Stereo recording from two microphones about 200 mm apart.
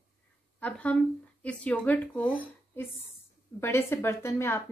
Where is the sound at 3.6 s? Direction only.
10° left (ahead or behind).